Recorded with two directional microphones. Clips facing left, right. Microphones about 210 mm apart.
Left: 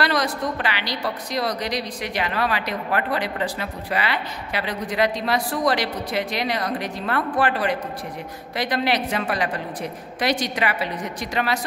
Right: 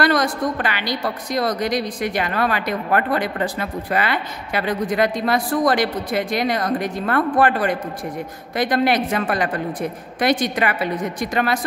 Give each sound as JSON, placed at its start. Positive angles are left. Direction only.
{"t": 0.0, "sound": "a woman's voice", "side_deg": -50}